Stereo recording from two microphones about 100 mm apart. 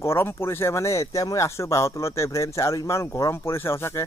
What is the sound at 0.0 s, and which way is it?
Speech, 25° left (ahead or behind).